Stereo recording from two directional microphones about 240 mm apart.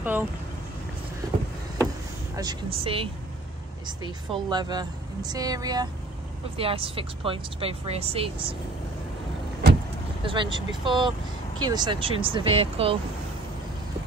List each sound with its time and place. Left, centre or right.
0.0 s speech: centre
2.3 s speech: centre
4.3 s speech: centre
10.2 s speech: centre